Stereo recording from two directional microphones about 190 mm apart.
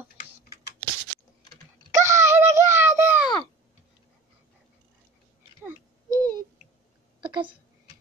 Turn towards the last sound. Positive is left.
turn(degrees=-25)  # may be behind; listen again after turning